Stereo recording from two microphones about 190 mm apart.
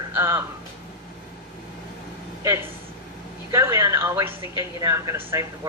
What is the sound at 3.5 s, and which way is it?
Speech, 15° right (ahead or behind).